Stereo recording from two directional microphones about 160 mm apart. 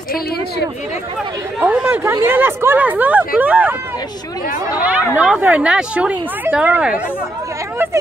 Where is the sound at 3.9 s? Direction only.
25° left (ahead or behind).